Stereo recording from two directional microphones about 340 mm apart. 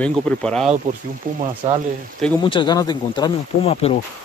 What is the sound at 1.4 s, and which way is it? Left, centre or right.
Speech, centre.